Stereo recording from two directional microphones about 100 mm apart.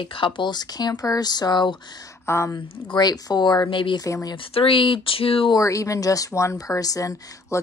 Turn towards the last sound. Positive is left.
turn(degrees=35)  # may be behind; listen again after turning